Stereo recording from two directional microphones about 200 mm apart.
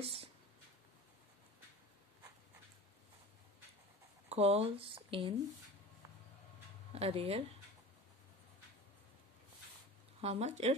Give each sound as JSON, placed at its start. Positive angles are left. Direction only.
{"t": 0.0, "sound": "a sound", "side_deg": -30}
{"t": 4.3, "sound": "speech", "side_deg": -30}
{"t": 6.9, "sound": "speech", "side_deg": -30}
{"t": 10.2, "sound": "speech", "side_deg": -30}